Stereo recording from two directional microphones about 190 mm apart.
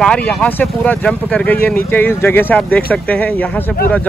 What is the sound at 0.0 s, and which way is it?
Speech, 5° left (ahead or behind).